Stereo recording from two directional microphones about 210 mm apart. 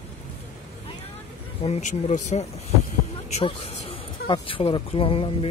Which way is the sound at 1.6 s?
30° left (ahead or behind).